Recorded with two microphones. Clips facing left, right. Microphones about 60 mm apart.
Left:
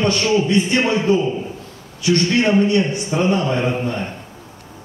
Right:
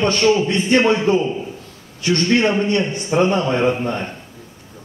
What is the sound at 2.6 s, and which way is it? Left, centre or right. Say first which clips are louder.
A man's voice: left 2 dB; right.